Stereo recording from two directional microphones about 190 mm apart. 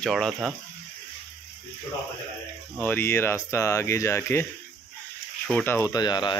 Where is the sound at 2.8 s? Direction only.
10° left (ahead or behind).